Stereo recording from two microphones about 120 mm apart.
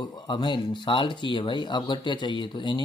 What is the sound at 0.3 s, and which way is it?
Speech, 40° left (ahead or behind).